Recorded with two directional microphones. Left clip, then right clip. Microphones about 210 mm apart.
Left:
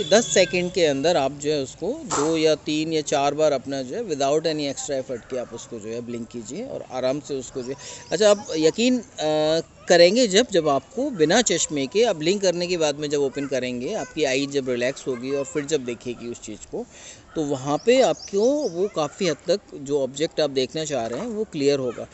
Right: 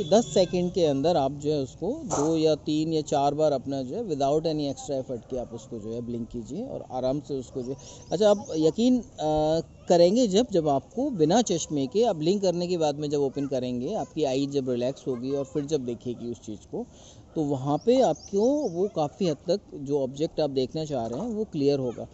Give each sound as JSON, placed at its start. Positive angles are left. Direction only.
{"t": 0.1, "sound": "speech", "side_deg": 10}
{"t": 17.4, "sound": "speech", "side_deg": 5}
{"t": 18.5, "sound": "speech", "side_deg": 30}
{"t": 19.1, "sound": "speech", "side_deg": 10}